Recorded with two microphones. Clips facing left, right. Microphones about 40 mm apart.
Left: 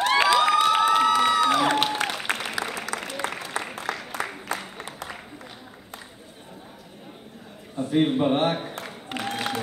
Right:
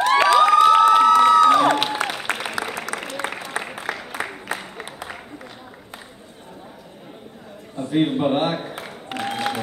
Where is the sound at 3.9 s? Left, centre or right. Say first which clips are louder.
Right 2 dB; centre.